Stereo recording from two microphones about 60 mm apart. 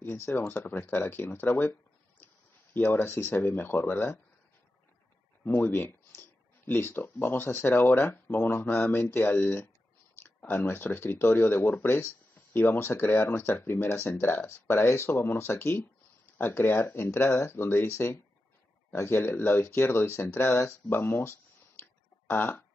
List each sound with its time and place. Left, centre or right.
0.0 s speech: left
5.4 s speech: left
21.2 s a sound: left
22.3 s fart: left